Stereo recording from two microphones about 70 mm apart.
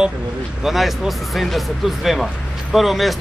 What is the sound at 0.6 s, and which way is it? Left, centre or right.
Speech, centre.